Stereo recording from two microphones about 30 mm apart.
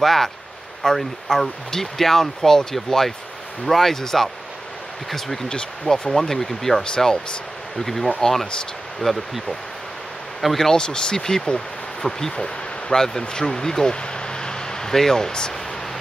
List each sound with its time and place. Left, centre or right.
0.0 s speech: centre
5.5 s speech: centre
10.6 s speech: left
14.0 s a sound: left